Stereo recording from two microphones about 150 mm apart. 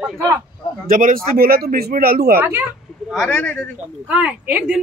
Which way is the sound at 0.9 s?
70° right (ahead or behind).